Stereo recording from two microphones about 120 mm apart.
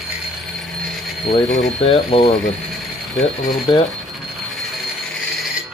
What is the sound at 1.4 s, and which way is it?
Speech, centre (ahead or behind).